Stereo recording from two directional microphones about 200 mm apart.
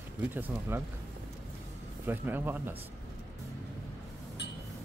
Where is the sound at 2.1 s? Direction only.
10° right (ahead or behind).